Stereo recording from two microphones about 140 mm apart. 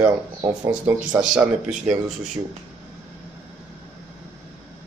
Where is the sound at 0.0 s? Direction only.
30° right (ahead or behind).